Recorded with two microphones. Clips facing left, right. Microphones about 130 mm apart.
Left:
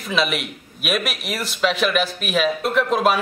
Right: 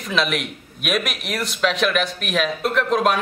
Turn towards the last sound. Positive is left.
turn(degrees=5)  # may be behind; listen again after turning